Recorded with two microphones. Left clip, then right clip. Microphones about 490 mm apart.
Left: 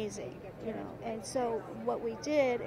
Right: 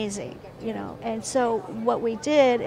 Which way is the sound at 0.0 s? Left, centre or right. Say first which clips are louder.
Right 7 dB; right.